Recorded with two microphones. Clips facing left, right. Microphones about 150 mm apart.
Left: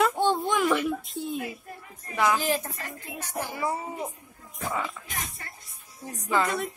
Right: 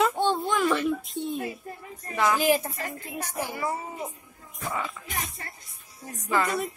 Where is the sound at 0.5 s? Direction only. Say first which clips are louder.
Even; 15° left (ahead or behind).